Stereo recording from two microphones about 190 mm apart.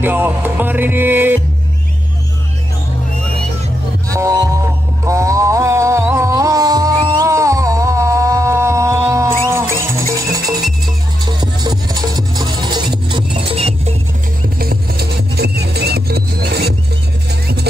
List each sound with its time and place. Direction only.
0.0 s music: 10° right (ahead or behind)
4.1 s music: 15° right (ahead or behind)
14.6 s music: 55° right (ahead or behind)